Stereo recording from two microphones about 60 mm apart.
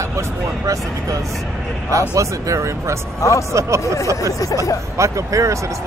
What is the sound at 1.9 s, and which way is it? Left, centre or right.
Speech, right.